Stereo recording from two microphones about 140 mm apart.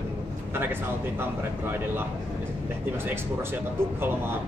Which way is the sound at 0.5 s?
15° right (ahead or behind).